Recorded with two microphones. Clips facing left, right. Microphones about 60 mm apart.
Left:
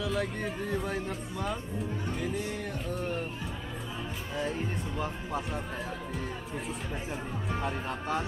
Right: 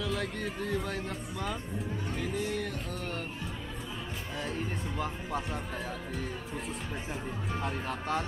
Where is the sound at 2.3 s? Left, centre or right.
Centre.